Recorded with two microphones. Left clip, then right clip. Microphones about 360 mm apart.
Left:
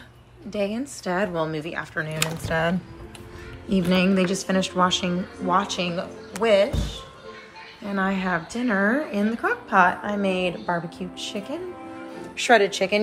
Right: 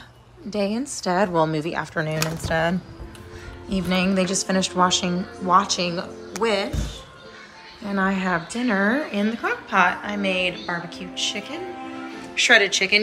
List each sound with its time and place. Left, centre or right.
0.5 s speech: centre
3.7 s speech: centre